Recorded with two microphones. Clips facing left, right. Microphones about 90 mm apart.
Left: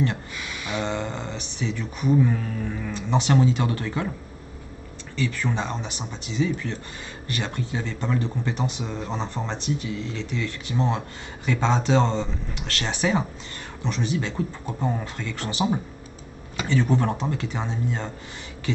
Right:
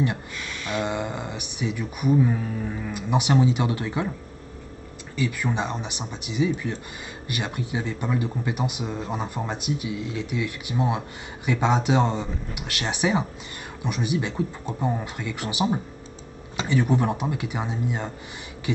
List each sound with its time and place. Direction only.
0.5 s a sound: 10° left (ahead or behind)
0.7 s a man's voice: 15° right (ahead or behind)
5.1 s a man's voice: 10° right (ahead or behind)
16.6 s a man's voice: 15° right (ahead or behind)